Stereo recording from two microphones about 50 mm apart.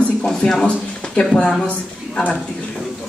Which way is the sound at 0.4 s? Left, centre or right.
Centre.